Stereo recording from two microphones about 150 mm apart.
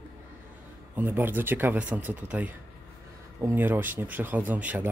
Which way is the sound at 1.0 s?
15° right (ahead or behind).